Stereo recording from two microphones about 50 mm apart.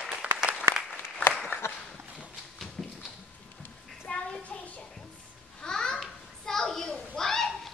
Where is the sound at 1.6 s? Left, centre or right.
Left.